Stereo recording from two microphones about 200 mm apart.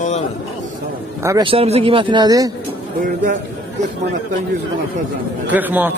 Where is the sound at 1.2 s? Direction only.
20° right (ahead or behind).